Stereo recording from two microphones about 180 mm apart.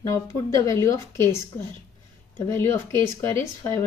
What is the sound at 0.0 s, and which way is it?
Speech, 15° left (ahead or behind).